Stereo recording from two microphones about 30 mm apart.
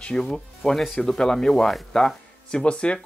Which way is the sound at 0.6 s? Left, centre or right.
Centre.